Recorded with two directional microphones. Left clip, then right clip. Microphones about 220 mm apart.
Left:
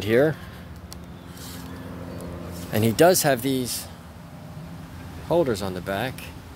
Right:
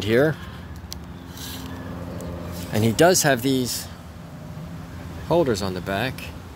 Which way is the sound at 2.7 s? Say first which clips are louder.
Even; 10° left (ahead or behind).